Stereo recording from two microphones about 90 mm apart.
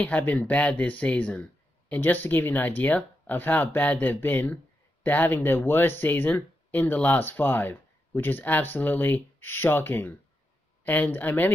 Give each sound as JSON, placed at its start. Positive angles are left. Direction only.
{"t": 0.0, "sound": "speech", "side_deg": 20}